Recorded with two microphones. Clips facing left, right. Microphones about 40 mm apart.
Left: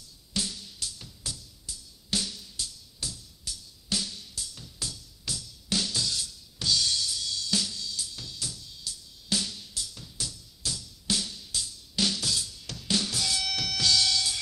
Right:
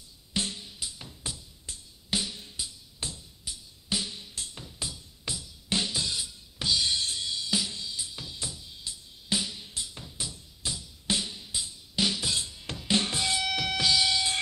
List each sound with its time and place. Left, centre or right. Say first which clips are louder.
0.3 s music: right 1 dB; right
1.7 s music: even; right
2.0 s music: right 1 dB; centre
7.1 s drum kit: even; right
9.7 s drum: right 1 dB; right
13.0 s music: right 2 dB; right